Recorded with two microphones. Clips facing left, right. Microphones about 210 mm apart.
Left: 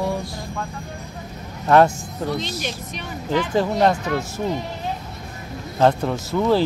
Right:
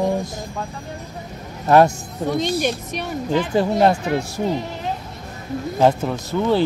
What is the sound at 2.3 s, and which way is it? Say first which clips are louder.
Speech: right 7 dB; 55° right (ahead or behind).